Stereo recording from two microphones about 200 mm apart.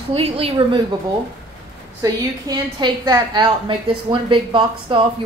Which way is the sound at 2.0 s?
20° right (ahead or behind).